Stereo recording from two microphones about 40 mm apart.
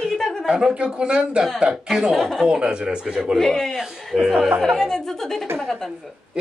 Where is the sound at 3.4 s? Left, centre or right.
Centre.